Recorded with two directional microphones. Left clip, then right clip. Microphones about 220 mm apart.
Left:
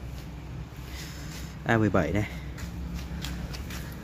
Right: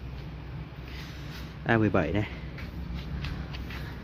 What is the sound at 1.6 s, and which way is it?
Speech, 5° left (ahead or behind).